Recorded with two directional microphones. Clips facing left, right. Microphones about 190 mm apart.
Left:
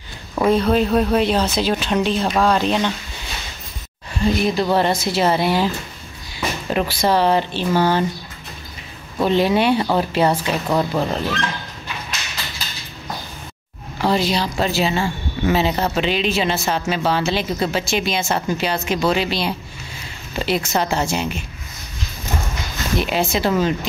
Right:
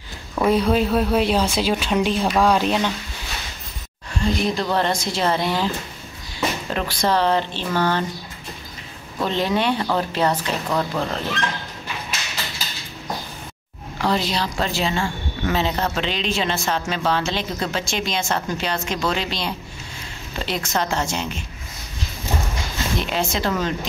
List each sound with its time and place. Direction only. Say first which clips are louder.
0.5 s speech: left 2 dB; 10° right (ahead or behind)
4.2 s speech: left 3 dB; 5° left (ahead or behind)
6.7 s speech: left 5 dB; 10° left (ahead or behind)
9.2 s speech: left 5 dB; 10° left (ahead or behind)
14.0 s speech: left 3 dB; 5° left (ahead or behind)
22.9 s speech: left 5 dB; 10° left (ahead or behind)